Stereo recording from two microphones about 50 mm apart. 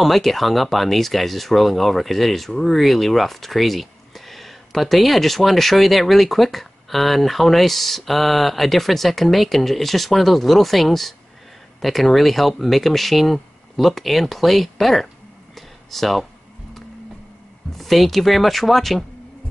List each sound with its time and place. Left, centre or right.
0.0 s speech: centre
15.5 s a sound: centre
17.7 s speech: centre